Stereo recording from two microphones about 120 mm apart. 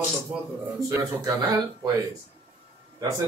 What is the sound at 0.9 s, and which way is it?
Speech, 30° right (ahead or behind).